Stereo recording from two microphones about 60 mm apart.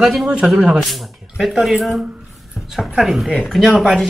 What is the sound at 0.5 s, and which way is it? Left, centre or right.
Speech, centre.